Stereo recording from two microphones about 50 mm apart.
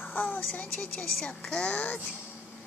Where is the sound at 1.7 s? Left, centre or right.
Left.